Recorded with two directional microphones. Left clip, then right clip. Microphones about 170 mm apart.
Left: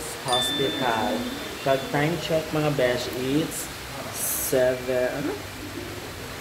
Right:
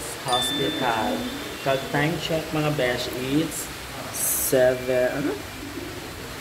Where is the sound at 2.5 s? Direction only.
20° left (ahead or behind).